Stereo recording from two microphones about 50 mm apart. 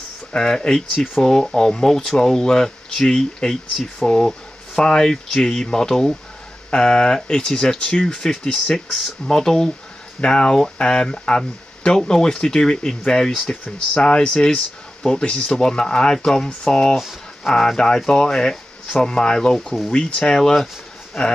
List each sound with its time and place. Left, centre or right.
0.3 s speech: centre
16.9 s speech: centre